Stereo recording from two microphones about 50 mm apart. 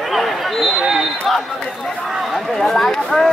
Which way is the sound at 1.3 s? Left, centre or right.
Centre.